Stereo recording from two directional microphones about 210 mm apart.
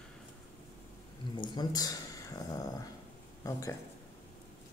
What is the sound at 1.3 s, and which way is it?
Speech, 20° left (ahead or behind).